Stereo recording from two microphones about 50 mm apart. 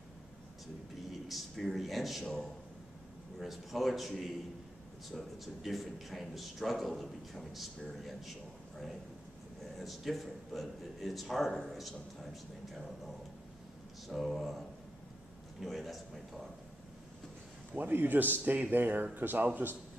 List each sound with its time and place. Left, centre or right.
1.3 s speech: centre
3.3 s speech: centre
5.4 s speech: centre
14.0 s speech: centre
15.6 s speech: centre
17.7 s speech: right